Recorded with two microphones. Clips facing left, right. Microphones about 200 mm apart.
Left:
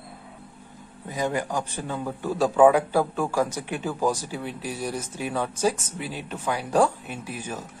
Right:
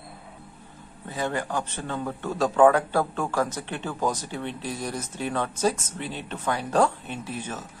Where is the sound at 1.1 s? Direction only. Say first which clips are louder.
Left 2 dB; 15° left (ahead or behind).